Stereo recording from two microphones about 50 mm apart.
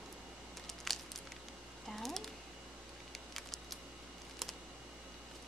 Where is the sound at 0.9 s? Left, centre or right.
Centre.